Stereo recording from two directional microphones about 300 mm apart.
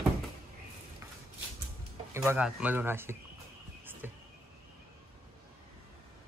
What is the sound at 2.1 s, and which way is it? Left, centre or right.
Speech, centre.